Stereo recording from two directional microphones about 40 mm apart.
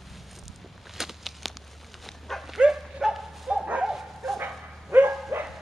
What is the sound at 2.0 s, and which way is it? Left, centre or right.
Dog, centre.